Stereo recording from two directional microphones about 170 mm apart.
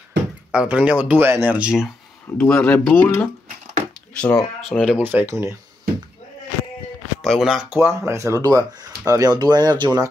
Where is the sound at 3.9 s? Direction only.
5° left (ahead or behind).